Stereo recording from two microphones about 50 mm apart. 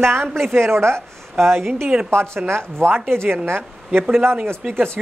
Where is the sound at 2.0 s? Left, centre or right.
Right.